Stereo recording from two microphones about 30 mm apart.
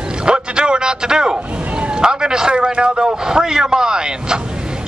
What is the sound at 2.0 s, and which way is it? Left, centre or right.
A man's voice, right.